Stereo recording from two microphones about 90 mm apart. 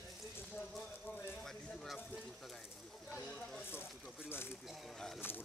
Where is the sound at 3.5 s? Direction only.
25° left (ahead or behind).